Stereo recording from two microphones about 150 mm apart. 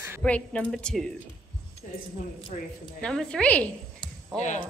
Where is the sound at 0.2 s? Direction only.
10° left (ahead or behind).